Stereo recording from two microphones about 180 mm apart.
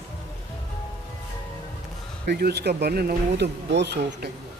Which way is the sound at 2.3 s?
65° right (ahead or behind).